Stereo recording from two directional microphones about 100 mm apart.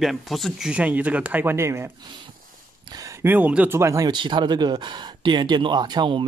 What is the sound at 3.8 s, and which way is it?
Speech, 30° right (ahead or behind).